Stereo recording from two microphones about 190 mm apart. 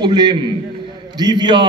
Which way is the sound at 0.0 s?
25° right (ahead or behind).